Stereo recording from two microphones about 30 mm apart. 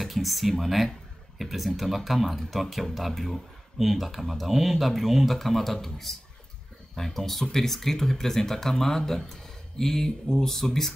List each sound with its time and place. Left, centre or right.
0.0 s speech: centre